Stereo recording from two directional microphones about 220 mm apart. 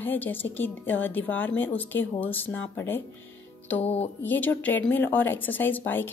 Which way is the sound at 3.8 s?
30° left (ahead or behind).